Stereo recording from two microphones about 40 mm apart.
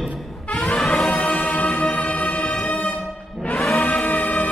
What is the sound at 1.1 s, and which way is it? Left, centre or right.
Music, left.